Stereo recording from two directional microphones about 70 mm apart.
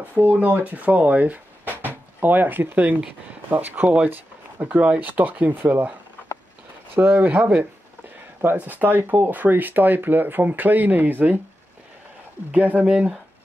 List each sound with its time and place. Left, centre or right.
0.0 s speech: right
7.0 s speech: right
12.4 s speech: right